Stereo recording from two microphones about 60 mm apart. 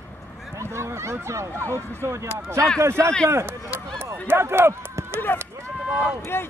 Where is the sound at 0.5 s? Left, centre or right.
Right.